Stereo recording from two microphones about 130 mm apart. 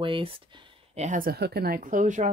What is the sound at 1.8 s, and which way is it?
Speech, 90° right.